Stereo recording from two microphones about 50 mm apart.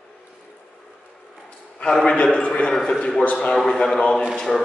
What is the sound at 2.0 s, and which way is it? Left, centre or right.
A man's voice, centre.